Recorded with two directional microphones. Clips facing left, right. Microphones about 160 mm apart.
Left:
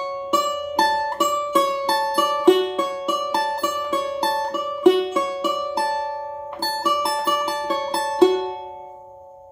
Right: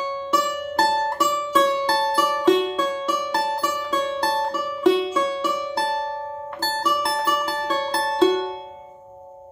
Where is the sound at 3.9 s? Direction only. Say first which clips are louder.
Right 1 dB; 15° left (ahead or behind).